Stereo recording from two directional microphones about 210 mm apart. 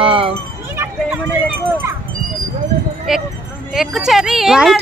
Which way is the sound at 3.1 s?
Centre (ahead or behind).